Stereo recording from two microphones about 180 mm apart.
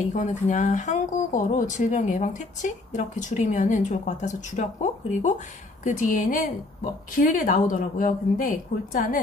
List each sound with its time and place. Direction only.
0.0 s speech: 40° left (ahead or behind)